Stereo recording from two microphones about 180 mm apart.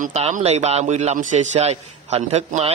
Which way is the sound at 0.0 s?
40° right (ahead or behind).